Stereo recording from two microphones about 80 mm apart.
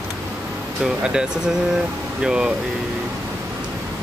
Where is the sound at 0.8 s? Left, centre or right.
Centre.